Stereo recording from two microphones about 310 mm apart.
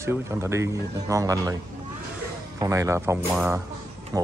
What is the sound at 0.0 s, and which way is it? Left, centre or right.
Speech, centre.